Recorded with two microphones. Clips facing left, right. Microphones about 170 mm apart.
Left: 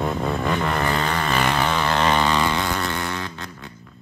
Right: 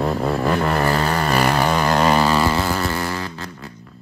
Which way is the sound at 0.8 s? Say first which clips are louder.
Right 4 dB; 35° right (ahead or behind).